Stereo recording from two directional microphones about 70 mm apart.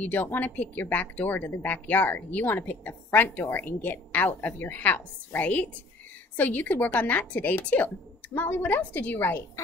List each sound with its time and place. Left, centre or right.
0.0 s a woman's voice: left